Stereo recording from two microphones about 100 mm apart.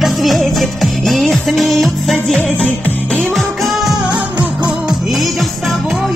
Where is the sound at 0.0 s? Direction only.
Centre (ahead or behind).